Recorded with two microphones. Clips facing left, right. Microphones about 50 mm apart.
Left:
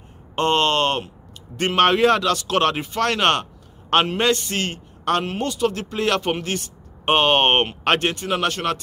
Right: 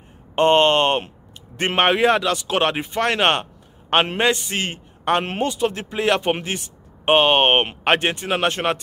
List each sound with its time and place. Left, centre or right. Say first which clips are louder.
0.4 s a man's voice: right 4 dB; right
8.1 s speech: right 1 dB; right